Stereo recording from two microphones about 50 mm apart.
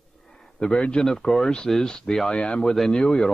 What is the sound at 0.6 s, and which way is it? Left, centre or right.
Speech, left.